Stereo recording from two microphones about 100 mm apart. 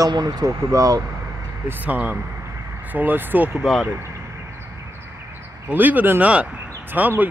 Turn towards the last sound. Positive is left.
turn(degrees=-15)  # may be behind; listen again after turning